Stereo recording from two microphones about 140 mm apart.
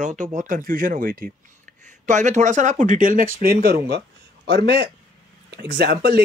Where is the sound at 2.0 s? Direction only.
60° right (ahead or behind); by 3.8 s 90° right.